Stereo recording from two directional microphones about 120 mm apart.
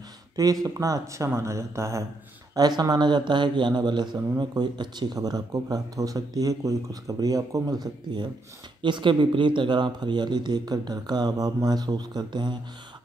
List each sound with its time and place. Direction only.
0.7 s speech: 30° right (ahead or behind)